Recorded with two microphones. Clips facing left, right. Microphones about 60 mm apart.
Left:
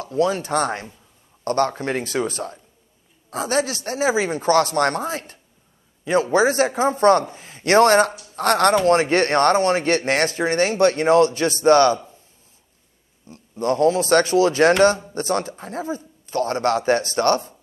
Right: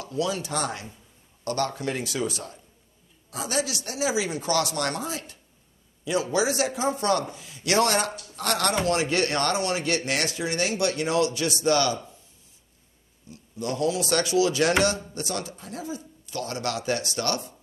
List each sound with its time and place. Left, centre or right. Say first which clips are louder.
0.0 s speech: left 7 dB; left
13.3 s speech: left 9 dB; left